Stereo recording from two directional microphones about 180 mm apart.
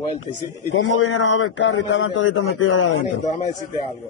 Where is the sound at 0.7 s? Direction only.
90° left.